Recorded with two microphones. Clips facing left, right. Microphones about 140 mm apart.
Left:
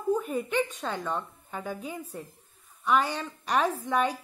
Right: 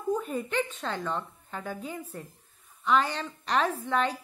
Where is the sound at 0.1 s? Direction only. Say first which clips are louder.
Left 2 dB; 10° left (ahead or behind).